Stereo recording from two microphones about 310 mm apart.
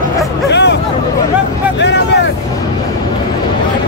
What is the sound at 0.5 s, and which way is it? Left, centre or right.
Hubbub, left.